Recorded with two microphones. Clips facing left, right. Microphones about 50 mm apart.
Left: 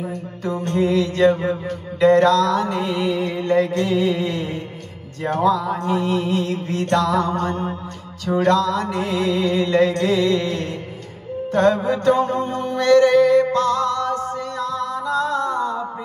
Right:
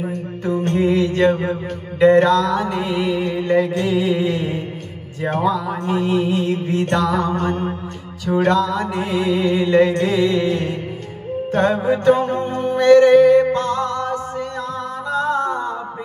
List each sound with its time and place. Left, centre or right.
0.0 s music: right; by 4.3 s centre
4.3 s music: right
5.4 s speech: centre
5.9 s music: right